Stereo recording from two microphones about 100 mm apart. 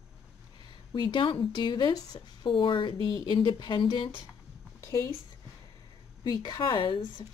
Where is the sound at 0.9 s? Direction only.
50° left (ahead or behind).